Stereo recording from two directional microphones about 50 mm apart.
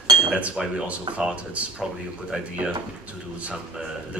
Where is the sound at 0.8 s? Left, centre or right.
Right.